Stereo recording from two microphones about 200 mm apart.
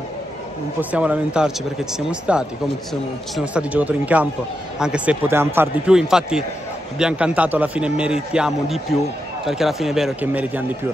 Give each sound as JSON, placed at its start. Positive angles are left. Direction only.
{"t": 0.7, "sound": "a man's voice", "side_deg": -5}